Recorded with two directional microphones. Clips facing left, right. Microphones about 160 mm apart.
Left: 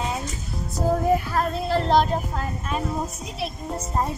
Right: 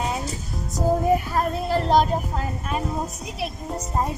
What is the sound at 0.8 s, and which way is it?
Music, 15° right (ahead or behind).